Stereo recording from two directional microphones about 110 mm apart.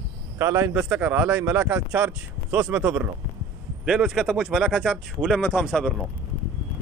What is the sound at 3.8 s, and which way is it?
Speech, 5° right (ahead or behind).